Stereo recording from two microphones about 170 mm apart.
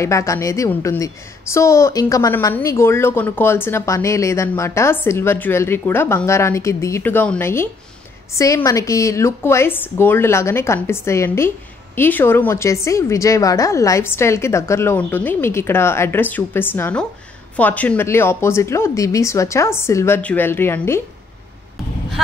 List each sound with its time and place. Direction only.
0.0 s speech: 20° left (ahead or behind)